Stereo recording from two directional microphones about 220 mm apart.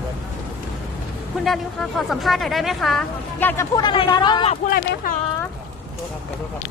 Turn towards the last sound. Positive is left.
turn(degrees=40)  # may be behind; listen again after turning